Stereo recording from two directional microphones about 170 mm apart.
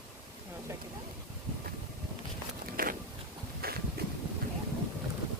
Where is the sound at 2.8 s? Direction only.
60° right (ahead or behind).